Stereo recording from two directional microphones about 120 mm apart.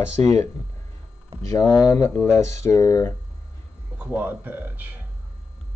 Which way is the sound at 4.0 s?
15° right (ahead or behind).